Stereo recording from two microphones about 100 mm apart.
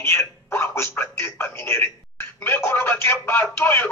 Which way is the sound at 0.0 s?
25° left (ahead or behind).